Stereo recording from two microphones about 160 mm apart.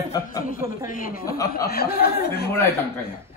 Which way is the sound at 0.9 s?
60° left (ahead or behind).